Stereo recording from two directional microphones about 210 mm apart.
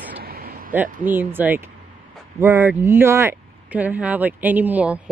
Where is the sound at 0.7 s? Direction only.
10° right (ahead or behind).